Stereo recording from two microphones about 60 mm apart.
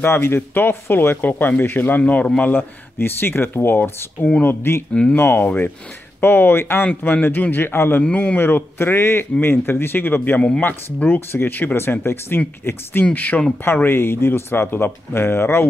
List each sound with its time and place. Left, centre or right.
0.0 s a man's voice: left
6.8 s a man's voice: left
8.0 s a man's voice: left
8.4 s a man's voice: left
13.1 s a man's voice: left